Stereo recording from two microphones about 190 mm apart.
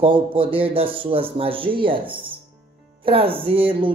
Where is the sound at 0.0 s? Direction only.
30° right (ahead or behind).